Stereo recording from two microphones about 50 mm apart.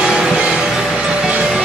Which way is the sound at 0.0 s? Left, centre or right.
Centre.